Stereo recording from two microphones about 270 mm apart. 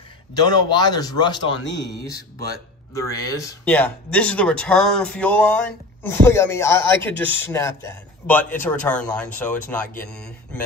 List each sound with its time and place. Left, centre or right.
0.3 s speech: centre
1.7 s speech: left
2.9 s speech: centre